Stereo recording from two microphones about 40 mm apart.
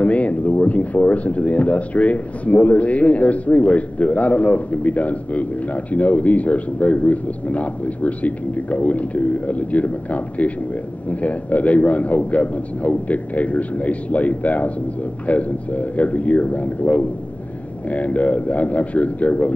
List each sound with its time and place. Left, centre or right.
0.0 s speech: left